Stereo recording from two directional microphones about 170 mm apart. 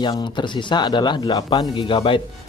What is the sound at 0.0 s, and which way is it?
Speech, 25° left (ahead or behind).